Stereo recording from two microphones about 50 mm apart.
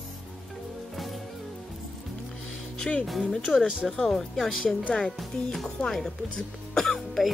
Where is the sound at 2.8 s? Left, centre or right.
Left.